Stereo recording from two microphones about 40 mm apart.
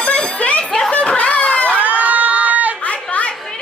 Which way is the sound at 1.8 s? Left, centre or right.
Right.